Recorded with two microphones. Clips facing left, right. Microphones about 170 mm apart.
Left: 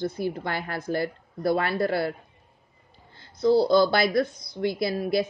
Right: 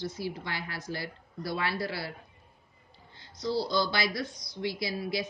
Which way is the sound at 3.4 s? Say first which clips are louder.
Left 10 dB; 55° left (ahead or behind).